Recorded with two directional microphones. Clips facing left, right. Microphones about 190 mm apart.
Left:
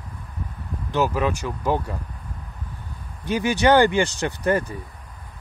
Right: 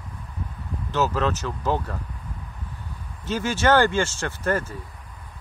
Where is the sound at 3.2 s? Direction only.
15° left (ahead or behind).